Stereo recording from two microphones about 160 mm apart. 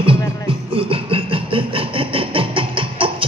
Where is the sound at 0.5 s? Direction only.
35° right (ahead or behind).